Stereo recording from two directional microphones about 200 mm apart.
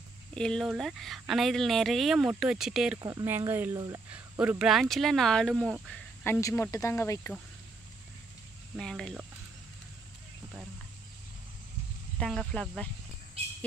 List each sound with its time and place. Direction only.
0.3 s speech: 5° left (ahead or behind)
3.0 s speech: 15° right (ahead or behind)
4.1 s speech: 5° right (ahead or behind); by 7.3 s 15° left (ahead or behind)
8.7 s speech: centre (ahead or behind)
12.2 s speech: 5° left (ahead or behind)